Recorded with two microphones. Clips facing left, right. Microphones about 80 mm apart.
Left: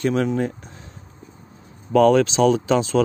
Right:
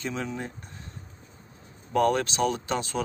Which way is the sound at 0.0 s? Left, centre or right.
Left.